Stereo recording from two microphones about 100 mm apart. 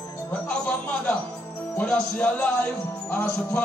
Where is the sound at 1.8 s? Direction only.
10° left (ahead or behind).